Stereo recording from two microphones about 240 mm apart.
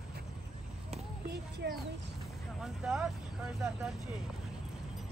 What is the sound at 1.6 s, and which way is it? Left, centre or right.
Speech, right.